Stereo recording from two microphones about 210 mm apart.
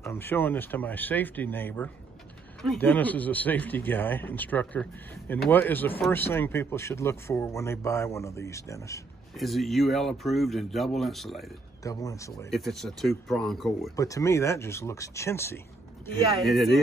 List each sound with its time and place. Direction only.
0.0 s speech: 10° left (ahead or behind)
9.4 s speech: centre (ahead or behind)
11.8 s speech: 15° left (ahead or behind)
12.4 s speech: centre (ahead or behind)
13.9 s speech: 15° left (ahead or behind)
16.4 s speech: centre (ahead or behind)